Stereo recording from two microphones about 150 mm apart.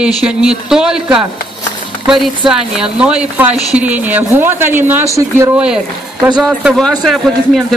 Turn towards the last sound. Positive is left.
turn(degrees=0)  # may be behind; listen again after turning